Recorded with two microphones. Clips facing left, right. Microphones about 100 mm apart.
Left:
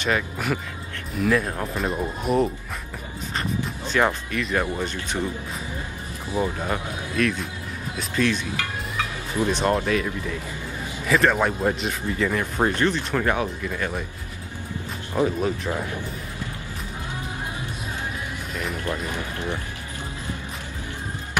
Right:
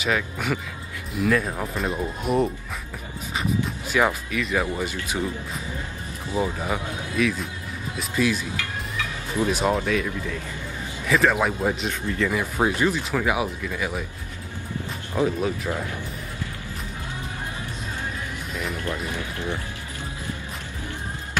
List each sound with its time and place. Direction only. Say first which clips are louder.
0.0 s speech: left 1 dB; centre (ahead or behind)
3.9 s speech: even; 5° right (ahead or behind)
6.4 s speech: left 1 dB; 5° right (ahead or behind)
9.5 s speech: left 1 dB; 5° right (ahead or behind)
11.1 s speech: left 1 dB; centre (ahead or behind)
15.2 s speech: right 1 dB; centre (ahead or behind)
18.5 s music: even; centre (ahead or behind)
18.9 s speech: left 1 dB; 15° left (ahead or behind)